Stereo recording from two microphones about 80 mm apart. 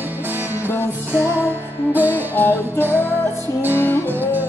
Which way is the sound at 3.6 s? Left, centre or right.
Right.